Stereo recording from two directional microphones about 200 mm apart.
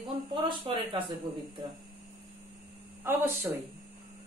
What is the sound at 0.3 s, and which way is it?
Speech, 25° right (ahead or behind).